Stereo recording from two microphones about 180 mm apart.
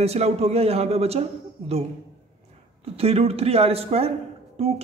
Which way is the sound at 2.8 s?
35° right (ahead or behind).